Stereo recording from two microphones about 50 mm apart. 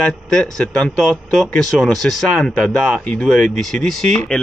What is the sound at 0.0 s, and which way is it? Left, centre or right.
Speech, centre.